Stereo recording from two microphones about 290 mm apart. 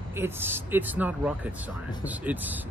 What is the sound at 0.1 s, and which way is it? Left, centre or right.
Speech, centre.